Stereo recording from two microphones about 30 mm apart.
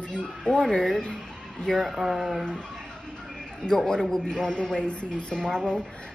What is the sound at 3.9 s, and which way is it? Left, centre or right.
A man's voice, left.